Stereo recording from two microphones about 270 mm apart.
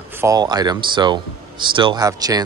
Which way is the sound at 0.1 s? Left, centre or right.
Centre.